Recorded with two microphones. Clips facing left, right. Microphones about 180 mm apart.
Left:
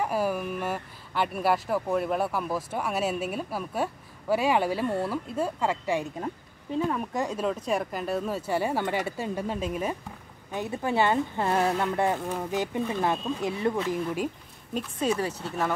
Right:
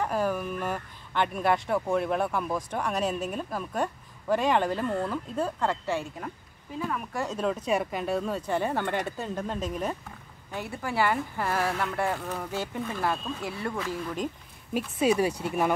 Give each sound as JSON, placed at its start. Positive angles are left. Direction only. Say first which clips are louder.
{"t": 0.0, "sound": "speech", "louder": "left 1 dB", "side_deg": 10}
{"t": 7.2, "sound": "speech", "louder": "left 2 dB", "side_deg": 10}
{"t": 7.4, "sound": "speech", "louder": "right 1 dB", "side_deg": 0}
{"t": 10.5, "sound": "speech", "louder": "left 4 dB", "side_deg": 20}
{"t": 14.7, "sound": "speech", "louder": "right 3 dB", "side_deg": -10}